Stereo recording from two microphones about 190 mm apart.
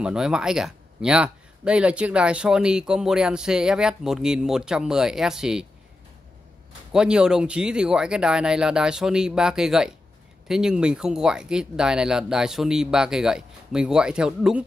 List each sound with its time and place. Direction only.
0.0 s speech: 5° right (ahead or behind)
6.9 s speech: 5° right (ahead or behind)